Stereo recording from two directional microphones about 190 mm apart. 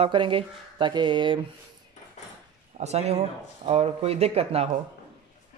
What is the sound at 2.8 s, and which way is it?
Speech, 35° right (ahead or behind).